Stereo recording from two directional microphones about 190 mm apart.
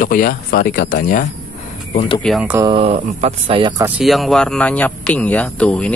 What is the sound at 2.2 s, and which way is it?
Speech, 5° right (ahead or behind).